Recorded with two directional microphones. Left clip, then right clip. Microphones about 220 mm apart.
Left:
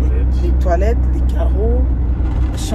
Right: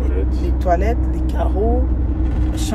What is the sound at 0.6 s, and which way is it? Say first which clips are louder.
Vehicle: even; centre (ahead or behind).